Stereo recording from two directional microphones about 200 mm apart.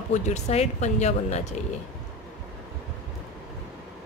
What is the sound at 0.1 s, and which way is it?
Speech, 35° left (ahead or behind).